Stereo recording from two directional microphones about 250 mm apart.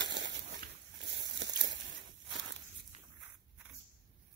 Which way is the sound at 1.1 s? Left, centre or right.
Right.